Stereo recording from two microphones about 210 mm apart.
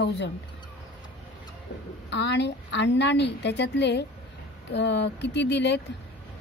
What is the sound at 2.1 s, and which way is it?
A woman's voice, 55° left (ahead or behind).